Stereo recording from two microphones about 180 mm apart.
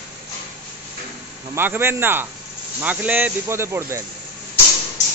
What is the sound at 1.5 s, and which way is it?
Speech, 10° right (ahead or behind).